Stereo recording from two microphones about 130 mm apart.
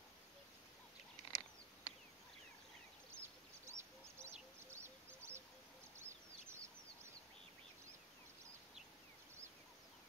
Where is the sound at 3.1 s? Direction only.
20° right (ahead or behind).